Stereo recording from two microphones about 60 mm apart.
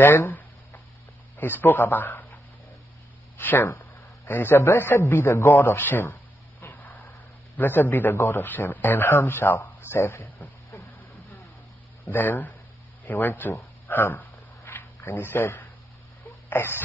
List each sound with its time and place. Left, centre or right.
0.0 s speech: left
1.6 s speech: left
3.3 s a man's voice: left
5.5 s speech: left
6.6 s vehicle: left
7.5 s speech: left
10.8 s vehicle: left
12.1 s a man's voice: left
14.6 s a sound: left
16.3 s a sound: left